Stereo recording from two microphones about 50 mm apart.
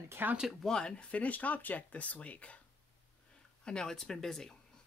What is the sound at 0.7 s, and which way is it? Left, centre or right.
Speech, left.